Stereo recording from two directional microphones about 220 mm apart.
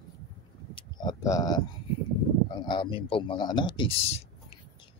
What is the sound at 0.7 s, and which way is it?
A man's voice, 20° left (ahead or behind).